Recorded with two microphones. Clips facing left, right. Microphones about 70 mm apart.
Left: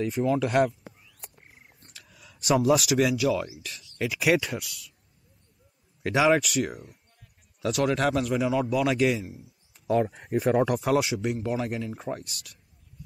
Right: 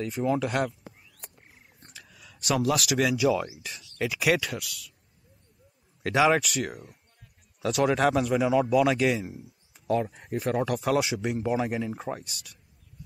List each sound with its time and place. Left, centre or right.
0.0 s a man's voice: centre
2.0 s a man's voice: centre
6.0 s a man's voice: centre
10.1 s speech: left
10.6 s a man's voice: centre